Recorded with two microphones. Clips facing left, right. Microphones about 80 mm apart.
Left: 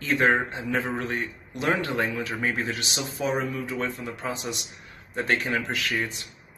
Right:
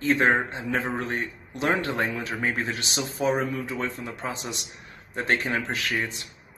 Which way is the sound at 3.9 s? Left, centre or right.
Right.